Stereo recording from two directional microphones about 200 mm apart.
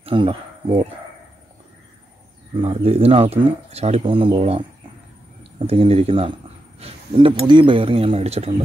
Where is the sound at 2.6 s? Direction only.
30° right (ahead or behind).